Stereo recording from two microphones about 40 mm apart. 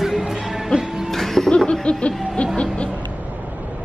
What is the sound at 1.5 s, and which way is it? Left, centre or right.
Chuckle, centre.